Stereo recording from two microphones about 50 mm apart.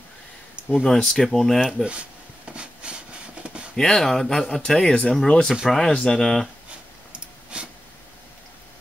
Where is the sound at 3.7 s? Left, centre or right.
Centre.